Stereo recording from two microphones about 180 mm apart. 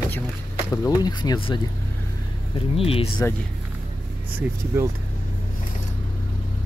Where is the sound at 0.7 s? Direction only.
20° left (ahead or behind).